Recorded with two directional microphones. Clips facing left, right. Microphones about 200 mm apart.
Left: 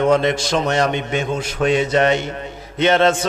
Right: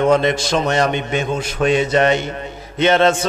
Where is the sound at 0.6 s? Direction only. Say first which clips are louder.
Right 1 dB; 20° right (ahead or behind).